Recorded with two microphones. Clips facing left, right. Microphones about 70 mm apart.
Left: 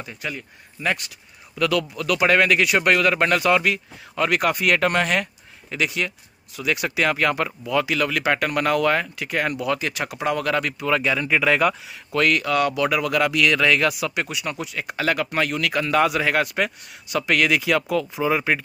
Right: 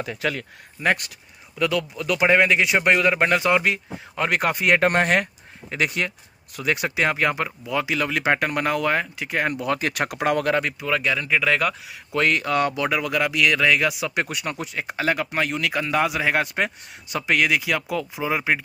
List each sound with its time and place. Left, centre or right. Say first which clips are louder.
0.0 s speech: right 5 dB; right
0.8 s speech: right 3 dB; right
1.6 s speech: left 1 dB; right
10.4 s speech: right 1 dB; right
10.9 s speech: left 2 dB; centre
12.1 s speech: left 1 dB; right
14.1 s speech: right 1 dB; right
17.4 s speech: left 3 dB; centre